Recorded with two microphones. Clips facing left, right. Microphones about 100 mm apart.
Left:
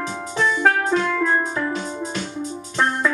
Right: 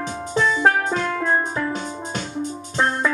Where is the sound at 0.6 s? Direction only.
25° right (ahead or behind).